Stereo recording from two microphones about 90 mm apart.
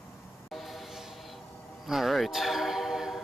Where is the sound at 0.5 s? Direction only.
Centre (ahead or behind).